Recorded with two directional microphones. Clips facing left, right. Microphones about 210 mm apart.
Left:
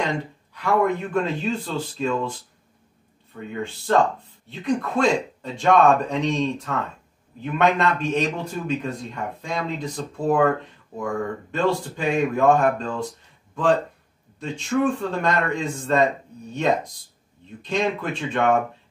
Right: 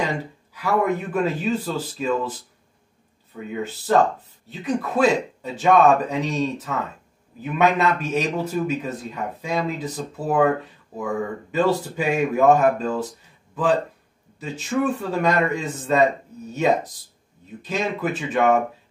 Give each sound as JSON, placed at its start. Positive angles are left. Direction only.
{"t": 0.6, "sound": "a man's voice", "side_deg": -5}
{"t": 3.3, "sound": "a man's voice", "side_deg": -5}
{"t": 14.4, "sound": "a man's voice", "side_deg": -5}